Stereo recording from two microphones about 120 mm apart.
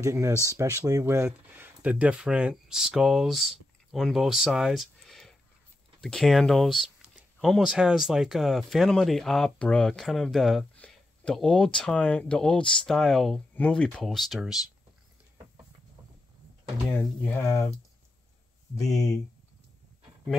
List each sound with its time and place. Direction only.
0.0 s speech: 25° right (ahead or behind); by 14.6 s centre (ahead or behind)
17.3 s speech: 25° left (ahead or behind)